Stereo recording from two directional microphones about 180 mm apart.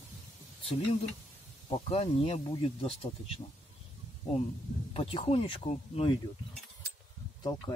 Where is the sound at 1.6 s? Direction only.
30° left (ahead or behind).